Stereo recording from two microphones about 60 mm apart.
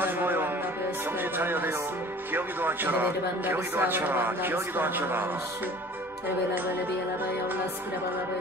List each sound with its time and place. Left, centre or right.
0.0 s music: right
1.2 s a man's voice: right